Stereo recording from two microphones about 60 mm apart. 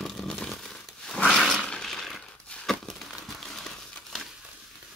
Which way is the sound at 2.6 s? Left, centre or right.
Centre.